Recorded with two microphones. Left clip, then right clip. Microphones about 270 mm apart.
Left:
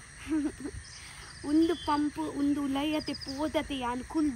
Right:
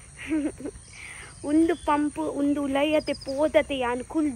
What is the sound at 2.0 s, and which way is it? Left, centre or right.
Speech, right.